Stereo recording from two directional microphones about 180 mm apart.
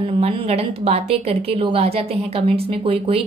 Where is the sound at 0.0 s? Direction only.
35° right (ahead or behind).